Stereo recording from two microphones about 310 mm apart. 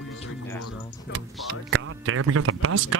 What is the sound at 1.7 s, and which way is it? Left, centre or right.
Speech, right.